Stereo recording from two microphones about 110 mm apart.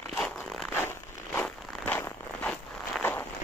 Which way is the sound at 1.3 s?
15° left (ahead or behind).